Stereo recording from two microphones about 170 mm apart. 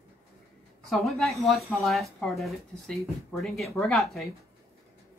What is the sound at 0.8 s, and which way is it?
Speech, centre (ahead or behind).